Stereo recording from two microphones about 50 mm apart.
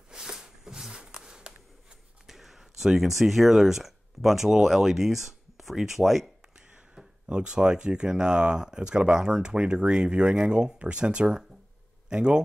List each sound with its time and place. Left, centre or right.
0.1 s a sound: centre
2.2 s speech: centre
7.2 s speech: centre